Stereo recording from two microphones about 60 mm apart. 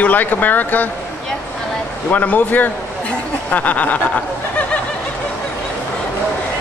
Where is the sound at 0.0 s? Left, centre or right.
Left.